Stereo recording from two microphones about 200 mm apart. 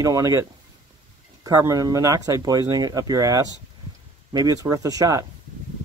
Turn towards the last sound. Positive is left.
turn(degrees=-15)  # may be behind; listen again after turning